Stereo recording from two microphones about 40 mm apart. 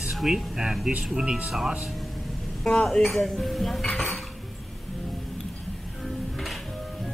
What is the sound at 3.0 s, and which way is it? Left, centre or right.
Speech, centre.